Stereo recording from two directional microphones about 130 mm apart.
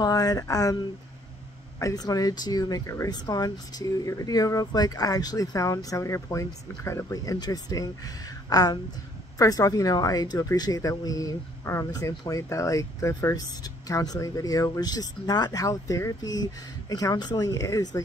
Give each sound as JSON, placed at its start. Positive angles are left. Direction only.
{"t": 0.0, "sound": "speech", "side_deg": 30}